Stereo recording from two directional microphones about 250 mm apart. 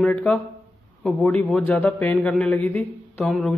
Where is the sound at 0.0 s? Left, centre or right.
Centre.